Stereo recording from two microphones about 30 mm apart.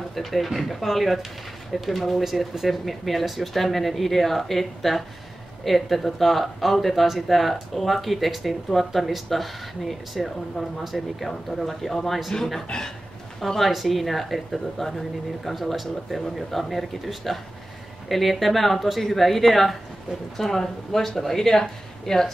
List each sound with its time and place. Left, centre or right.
0.1 s speech: centre
13.7 s speech: centre